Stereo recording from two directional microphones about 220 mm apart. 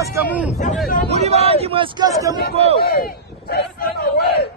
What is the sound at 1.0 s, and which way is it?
Speech, 30° right (ahead or behind).